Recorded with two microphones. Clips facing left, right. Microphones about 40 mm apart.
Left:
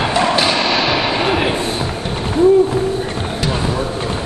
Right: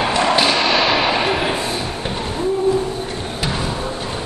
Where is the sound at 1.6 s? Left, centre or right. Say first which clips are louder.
Left 2 dB; left.